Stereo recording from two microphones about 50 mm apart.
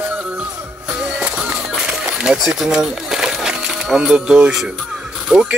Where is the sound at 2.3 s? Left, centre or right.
Centre.